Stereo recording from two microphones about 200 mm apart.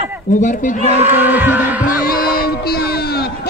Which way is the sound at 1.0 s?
10° right (ahead or behind).